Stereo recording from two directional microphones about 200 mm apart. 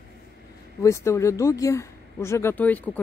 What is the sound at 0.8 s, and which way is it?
Speech, 15° left (ahead or behind).